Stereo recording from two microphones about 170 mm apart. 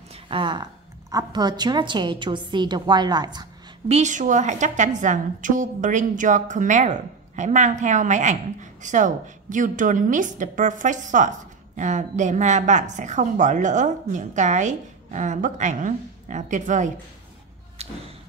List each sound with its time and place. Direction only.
0.1 s a sound: 30° right (ahead or behind)
1.1 s a woman's voice: 25° right (ahead or behind)
3.9 s a woman's voice: 45° right (ahead or behind)
17.8 s thump: 40° right (ahead or behind)